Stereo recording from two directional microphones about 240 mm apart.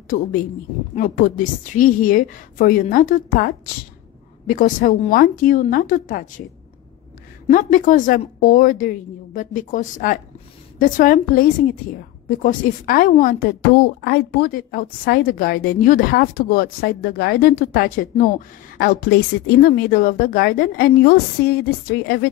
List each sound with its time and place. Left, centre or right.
0.1 s a woman's voice: left
7.4 s a woman's voice: left